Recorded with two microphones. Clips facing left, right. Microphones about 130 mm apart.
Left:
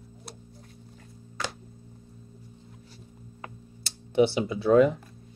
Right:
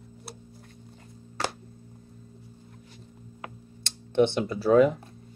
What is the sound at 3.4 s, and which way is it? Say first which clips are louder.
Computer keyboard: right 1 dB; 5° left (ahead or behind).